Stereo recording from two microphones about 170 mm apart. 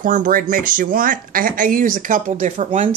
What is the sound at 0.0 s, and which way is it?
Speech, 50° right (ahead or behind).